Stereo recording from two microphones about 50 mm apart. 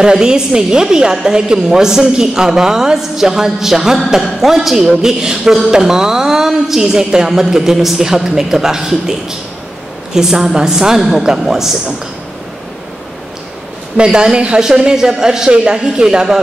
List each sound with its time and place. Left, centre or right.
0.0 s a woman's voice: centre
10.1 s a woman's voice: centre
13.9 s a woman's voice: centre